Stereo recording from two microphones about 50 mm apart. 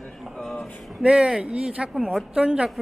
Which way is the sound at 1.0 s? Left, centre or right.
Centre.